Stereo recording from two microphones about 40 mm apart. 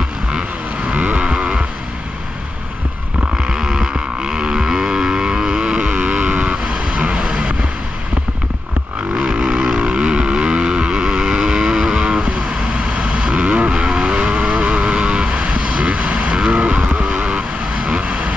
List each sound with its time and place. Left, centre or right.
0.8 s vehicle: right
3.4 s vehicle: centre
9.1 s vehicle: right; by 12.1 s centre
12.1 s vehicle: right